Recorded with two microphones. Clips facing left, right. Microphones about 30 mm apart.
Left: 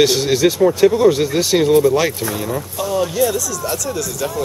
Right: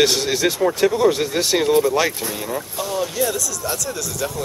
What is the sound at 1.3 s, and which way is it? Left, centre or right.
Speech, left.